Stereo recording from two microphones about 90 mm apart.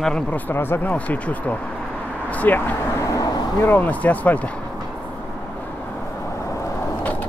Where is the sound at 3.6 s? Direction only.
25° left (ahead or behind).